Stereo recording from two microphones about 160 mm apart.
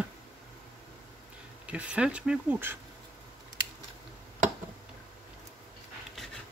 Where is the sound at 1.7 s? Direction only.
10° right (ahead or behind).